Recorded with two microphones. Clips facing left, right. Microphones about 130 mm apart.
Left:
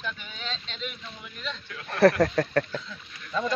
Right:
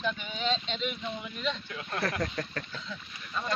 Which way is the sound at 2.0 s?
65° left (ahead or behind).